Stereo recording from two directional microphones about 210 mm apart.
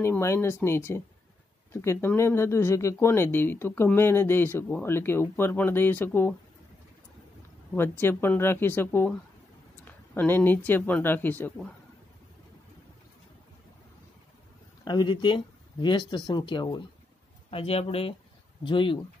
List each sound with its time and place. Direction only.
0.0 s speech: 15° left (ahead or behind)
7.7 s speech: 10° left (ahead or behind)
10.1 s speech: 10° left (ahead or behind)
14.9 s speech: 20° left (ahead or behind)